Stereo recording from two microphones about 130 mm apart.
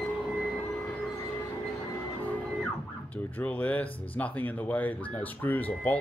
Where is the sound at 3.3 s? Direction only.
10° left (ahead or behind).